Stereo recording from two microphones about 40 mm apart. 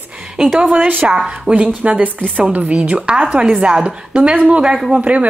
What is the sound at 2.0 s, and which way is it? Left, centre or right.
A woman's voice, right.